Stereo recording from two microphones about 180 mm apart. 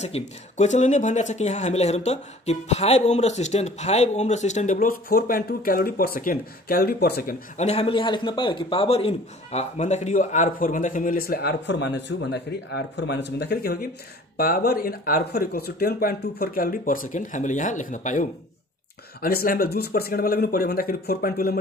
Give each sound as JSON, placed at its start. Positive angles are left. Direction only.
{"t": 0.0, "sound": "speech", "side_deg": 40}
{"t": 7.5, "sound": "a man's voice", "side_deg": 35}
{"t": 19.2, "sound": "speech", "side_deg": 55}